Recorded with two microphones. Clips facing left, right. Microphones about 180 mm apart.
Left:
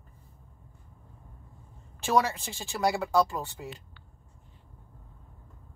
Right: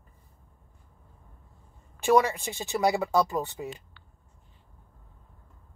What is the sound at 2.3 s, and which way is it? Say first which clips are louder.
Speech: right 6 dB; 15° right (ahead or behind).